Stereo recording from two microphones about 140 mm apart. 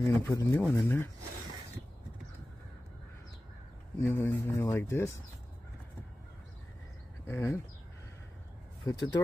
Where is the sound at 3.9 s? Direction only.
15° left (ahead or behind).